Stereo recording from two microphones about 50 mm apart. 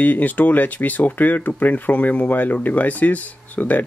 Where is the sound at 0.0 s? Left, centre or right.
Left.